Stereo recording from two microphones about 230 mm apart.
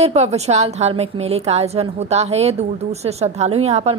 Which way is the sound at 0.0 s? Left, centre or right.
Right.